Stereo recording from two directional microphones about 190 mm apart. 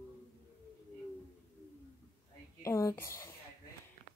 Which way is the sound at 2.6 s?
15° left (ahead or behind).